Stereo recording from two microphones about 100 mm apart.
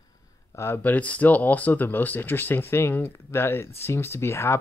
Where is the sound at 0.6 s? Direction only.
20° left (ahead or behind).